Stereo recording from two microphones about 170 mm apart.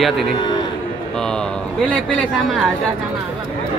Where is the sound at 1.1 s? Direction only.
5° left (ahead or behind).